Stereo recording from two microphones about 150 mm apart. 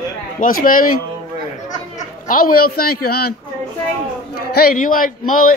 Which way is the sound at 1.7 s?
60° left (ahead or behind).